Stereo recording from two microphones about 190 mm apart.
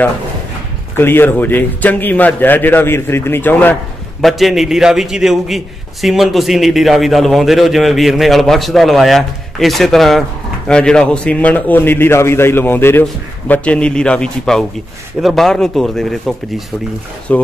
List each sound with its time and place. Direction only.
0.9 s a man's voice: 10° left (ahead or behind)